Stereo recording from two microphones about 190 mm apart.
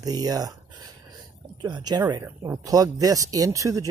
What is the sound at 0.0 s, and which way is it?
Speech, 20° right (ahead or behind).